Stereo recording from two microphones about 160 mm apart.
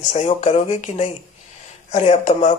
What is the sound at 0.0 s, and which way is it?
Speech, 50° left (ahead or behind).